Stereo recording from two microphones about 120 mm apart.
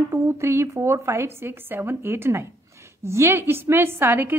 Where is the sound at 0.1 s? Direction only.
20° right (ahead or behind).